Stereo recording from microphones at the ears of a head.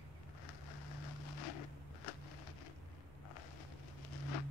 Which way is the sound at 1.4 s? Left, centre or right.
Left.